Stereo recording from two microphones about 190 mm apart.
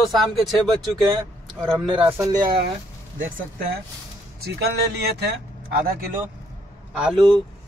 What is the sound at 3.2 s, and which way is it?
Speech, 45° right (ahead or behind).